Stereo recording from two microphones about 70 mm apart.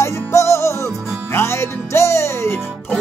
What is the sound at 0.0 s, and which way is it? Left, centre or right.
Music, left.